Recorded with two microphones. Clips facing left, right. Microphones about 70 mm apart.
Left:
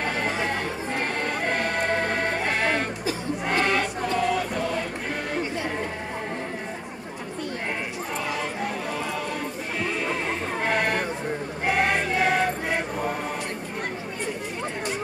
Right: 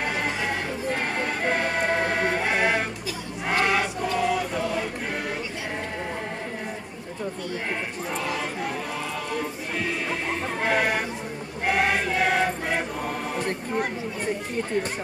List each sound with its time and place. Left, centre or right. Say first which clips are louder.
1.2 s music: right 1 dB; centre
3.4 s choir: right 1 dB; centre
10.6 s music: right 1 dB; centre
11.6 s choir: right 1 dB; centre